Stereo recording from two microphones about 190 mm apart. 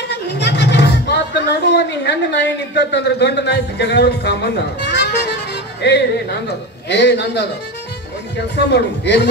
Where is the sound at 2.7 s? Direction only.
65° left (ahead or behind).